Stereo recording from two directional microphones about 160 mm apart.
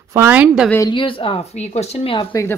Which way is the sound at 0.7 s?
30° left (ahead or behind).